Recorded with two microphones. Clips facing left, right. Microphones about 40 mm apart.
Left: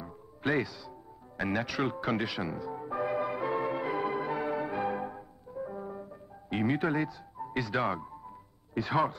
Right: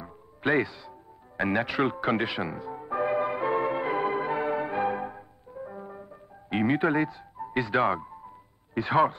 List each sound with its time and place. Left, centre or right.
0.0 s speech: right
2.9 s music: right
6.5 s music: right
7.5 s speech: right